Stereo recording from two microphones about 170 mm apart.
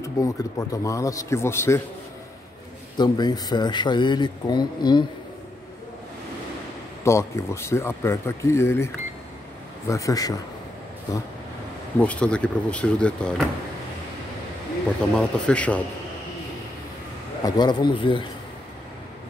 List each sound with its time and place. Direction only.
0.0 s speech: 20° left (ahead or behind)
3.0 s speech: 25° left (ahead or behind)
7.1 s speech: 15° left (ahead or behind)
12.0 s speech: 5° left (ahead or behind)
15.1 s speech: 5° left (ahead or behind)
17.5 s speech: 25° left (ahead or behind)